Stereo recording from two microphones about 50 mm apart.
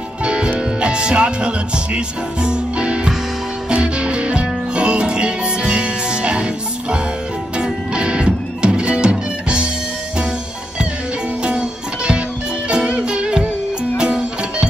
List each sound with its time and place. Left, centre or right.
0.2 s music: right
2.0 s speech: centre
3.7 s music: right
11.4 s music: right